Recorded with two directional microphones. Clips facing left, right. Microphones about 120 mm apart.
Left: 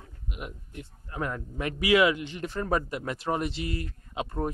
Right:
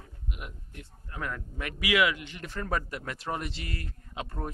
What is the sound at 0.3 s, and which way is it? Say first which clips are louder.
Speech: left 4 dB; 20° left (ahead or behind).